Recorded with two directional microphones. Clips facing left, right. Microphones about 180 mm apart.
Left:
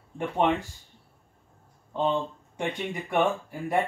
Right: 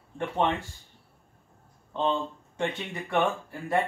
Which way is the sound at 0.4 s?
15° left (ahead or behind).